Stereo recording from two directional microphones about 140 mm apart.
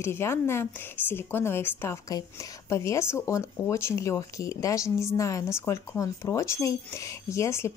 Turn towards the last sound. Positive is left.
turn(degrees=20)  # may be behind; listen again after turning